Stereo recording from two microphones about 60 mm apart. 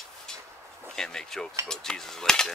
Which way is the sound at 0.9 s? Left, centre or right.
Centre.